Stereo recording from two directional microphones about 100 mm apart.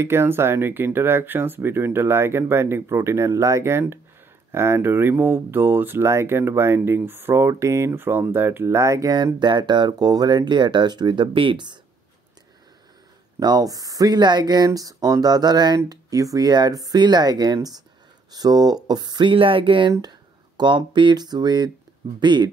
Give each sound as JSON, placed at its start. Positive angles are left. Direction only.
{"t": 0.0, "sound": "speech", "side_deg": -25}
{"t": 9.1, "sound": "speech", "side_deg": -45}
{"t": 13.4, "sound": "speech", "side_deg": -40}
{"t": 19.9, "sound": "speech", "side_deg": -45}